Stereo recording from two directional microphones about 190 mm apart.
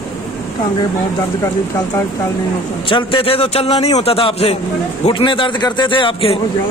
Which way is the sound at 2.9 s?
25° left (ahead or behind).